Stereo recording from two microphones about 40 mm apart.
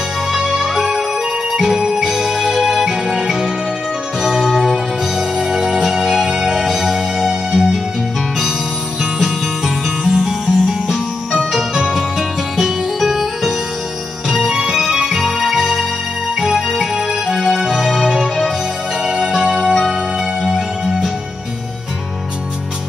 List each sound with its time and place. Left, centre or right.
0.4 s music: centre
10.0 s music: centre
19.5 s music: centre